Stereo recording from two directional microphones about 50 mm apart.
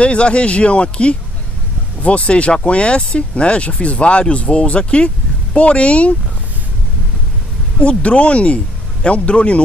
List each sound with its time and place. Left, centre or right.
0.0 s speech: left
7.8 s speech: left